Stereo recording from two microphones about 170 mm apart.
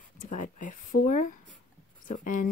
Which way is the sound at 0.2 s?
50° left (ahead or behind).